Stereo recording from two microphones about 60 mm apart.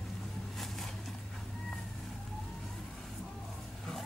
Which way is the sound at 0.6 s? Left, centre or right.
Centre.